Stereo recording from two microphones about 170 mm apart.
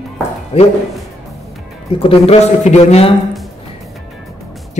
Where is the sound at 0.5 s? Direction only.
35° left (ahead or behind).